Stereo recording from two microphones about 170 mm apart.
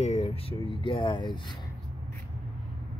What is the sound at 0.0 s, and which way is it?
Speech, 40° left (ahead or behind).